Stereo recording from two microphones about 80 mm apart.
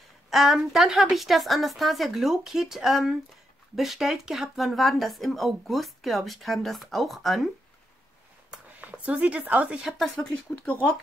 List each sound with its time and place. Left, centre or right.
0.3 s speech: centre
8.7 s speech: centre
9.8 s speech: centre